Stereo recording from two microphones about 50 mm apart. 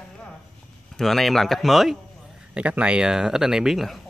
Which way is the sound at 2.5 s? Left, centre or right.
Right.